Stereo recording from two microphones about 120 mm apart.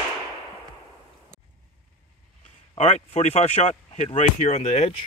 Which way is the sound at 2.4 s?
70° left (ahead or behind).